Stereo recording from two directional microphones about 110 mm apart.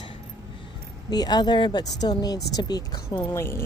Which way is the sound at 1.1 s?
40° left (ahead or behind).